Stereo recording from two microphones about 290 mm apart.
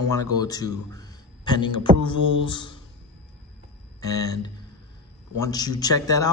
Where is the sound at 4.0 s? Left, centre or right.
Centre.